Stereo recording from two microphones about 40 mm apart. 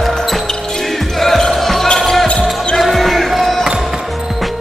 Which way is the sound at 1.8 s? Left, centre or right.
Centre.